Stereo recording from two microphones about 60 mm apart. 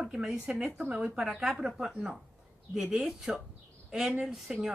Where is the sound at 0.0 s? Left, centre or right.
Centre.